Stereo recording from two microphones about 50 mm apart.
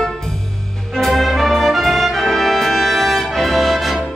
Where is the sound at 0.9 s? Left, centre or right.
Centre.